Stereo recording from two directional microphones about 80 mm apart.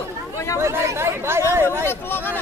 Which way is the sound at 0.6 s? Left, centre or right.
Right.